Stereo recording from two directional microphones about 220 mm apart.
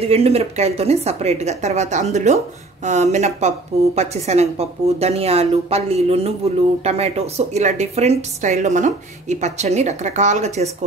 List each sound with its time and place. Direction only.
0.0 s a woman's voice: 25° right (ahead or behind)